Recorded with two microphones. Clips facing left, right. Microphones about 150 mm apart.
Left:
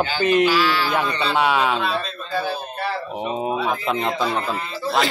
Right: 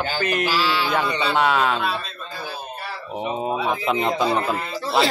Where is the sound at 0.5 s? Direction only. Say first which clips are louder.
Left 2 dB; 25° right (ahead or behind).